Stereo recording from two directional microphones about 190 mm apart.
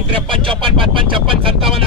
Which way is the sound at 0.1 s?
30° right (ahead or behind).